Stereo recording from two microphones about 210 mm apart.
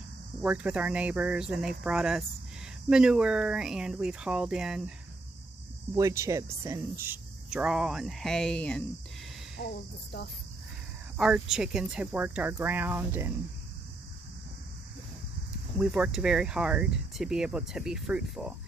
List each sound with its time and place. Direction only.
0.4 s speech: 5° right (ahead or behind)
5.9 s speech: 15° right (ahead or behind); by 8.8 s 5° left (ahead or behind)
9.6 s speech: 40° left (ahead or behind)
11.1 s speech: 5° right (ahead or behind)
15.8 s speech: 5° right (ahead or behind)